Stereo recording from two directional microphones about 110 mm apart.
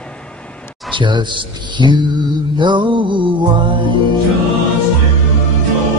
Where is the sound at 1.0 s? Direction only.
45° right (ahead or behind).